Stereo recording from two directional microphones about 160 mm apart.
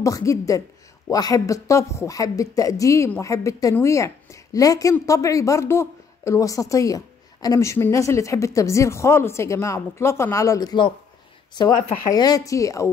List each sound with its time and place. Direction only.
0.0 s a woman's voice: 20° left (ahead or behind)